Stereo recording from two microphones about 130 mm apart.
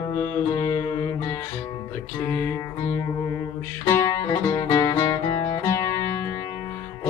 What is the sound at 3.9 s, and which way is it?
Music, 25° left (ahead or behind).